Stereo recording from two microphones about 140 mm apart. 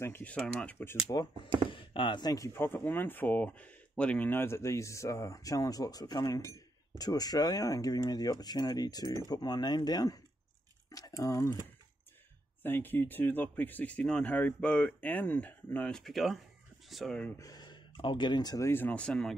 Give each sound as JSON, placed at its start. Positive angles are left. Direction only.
{"t": 0.0, "sound": "speech", "side_deg": 15}
{"t": 1.1, "sound": "speech", "side_deg": 30}
{"t": 12.6, "sound": "speech", "side_deg": 15}
{"t": 17.4, "sound": "speech", "side_deg": 30}
{"t": 18.7, "sound": "speech", "side_deg": 15}